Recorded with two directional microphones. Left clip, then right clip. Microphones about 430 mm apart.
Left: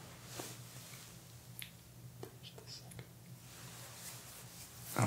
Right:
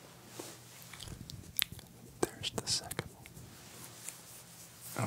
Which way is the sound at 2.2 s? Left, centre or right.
Right.